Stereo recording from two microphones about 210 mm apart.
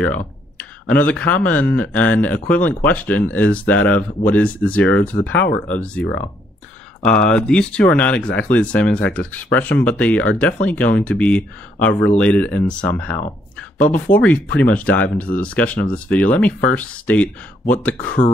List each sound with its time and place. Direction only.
0.8 s speech: 5° left (ahead or behind)